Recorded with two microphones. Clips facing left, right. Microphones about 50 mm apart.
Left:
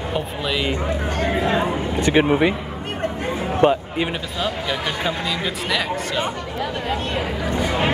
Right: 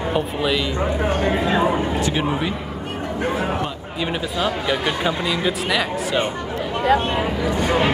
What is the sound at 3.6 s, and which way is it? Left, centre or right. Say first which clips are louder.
Speech: left 13 dB; left.